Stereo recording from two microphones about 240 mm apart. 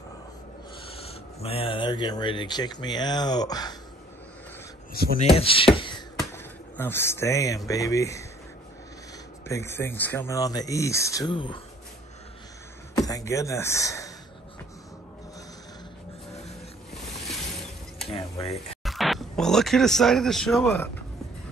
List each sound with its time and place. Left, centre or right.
1.0 s speech: left
5.0 s speech: left
5.3 s speech: left
5.8 s beatboxing: centre
6.1 s speech: centre
9.5 s speech: centre
12.9 s speech: centre
18.1 s speech: left
18.9 s speech: centre